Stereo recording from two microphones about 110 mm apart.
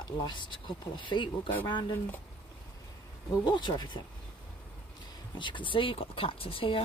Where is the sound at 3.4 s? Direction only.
45° left (ahead or behind).